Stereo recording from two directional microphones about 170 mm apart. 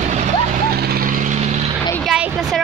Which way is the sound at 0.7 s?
65° right (ahead or behind).